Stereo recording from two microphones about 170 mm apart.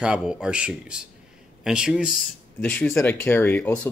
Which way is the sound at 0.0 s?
5° right (ahead or behind).